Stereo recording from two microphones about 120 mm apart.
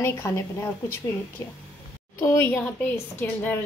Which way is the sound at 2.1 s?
20° left (ahead or behind).